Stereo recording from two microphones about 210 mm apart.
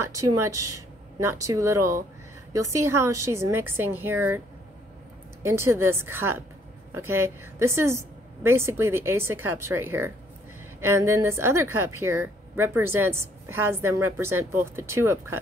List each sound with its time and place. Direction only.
0.0 s a woman's voice: 15° right (ahead or behind)
5.4 s a woman's voice: 10° right (ahead or behind)